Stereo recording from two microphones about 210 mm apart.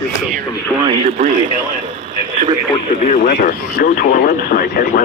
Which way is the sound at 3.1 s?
40° left (ahead or behind).